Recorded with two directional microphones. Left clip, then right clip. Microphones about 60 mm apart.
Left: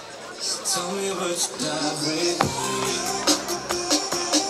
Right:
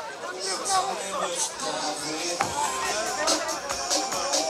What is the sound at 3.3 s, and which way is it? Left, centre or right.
Music, left.